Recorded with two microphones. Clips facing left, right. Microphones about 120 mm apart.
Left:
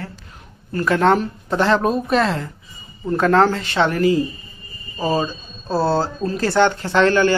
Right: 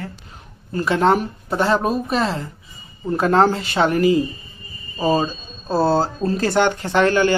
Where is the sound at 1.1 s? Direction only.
5° right (ahead or behind).